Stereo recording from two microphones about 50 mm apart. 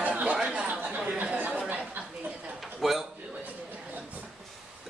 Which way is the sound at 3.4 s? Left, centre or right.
Right.